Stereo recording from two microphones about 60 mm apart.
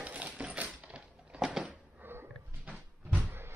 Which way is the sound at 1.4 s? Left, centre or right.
Centre.